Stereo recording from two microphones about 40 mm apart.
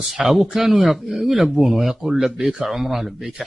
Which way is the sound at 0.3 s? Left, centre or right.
Centre.